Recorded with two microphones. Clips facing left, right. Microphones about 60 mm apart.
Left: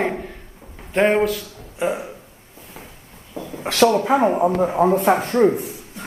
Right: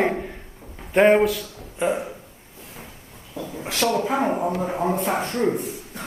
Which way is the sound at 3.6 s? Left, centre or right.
Left.